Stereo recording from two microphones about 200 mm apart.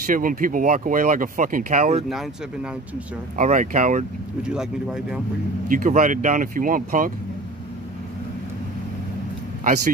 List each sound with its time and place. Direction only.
0.0 s speech: 45° right (ahead or behind)
3.3 s speech: 40° right (ahead or behind)
4.4 s speech: 5° right (ahead or behind)
5.7 s speech: 45° right (ahead or behind)